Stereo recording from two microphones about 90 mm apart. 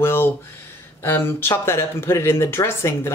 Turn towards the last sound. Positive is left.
turn(degrees=30)  # may be behind; listen again after turning